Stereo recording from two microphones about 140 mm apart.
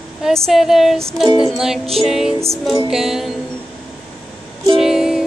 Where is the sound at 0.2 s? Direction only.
Centre (ahead or behind).